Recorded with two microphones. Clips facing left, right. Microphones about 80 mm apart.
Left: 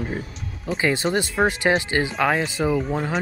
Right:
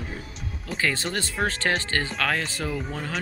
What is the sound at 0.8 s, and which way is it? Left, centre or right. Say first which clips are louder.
Speech: left 6 dB; centre.